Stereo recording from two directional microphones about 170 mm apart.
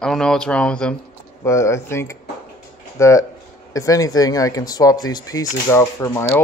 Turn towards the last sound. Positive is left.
turn(degrees=15)  # may be behind; listen again after turning